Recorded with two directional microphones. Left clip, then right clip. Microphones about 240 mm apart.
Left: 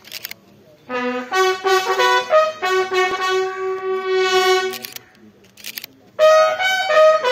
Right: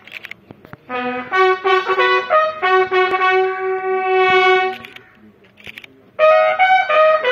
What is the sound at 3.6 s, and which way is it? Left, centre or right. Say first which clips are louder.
Music: right 3 dB; left.